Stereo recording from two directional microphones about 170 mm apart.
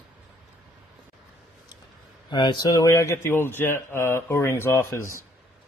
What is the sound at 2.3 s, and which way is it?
A man's voice, 25° left (ahead or behind).